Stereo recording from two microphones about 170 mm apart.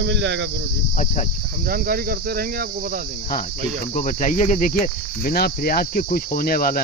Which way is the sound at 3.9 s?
50° left (ahead or behind).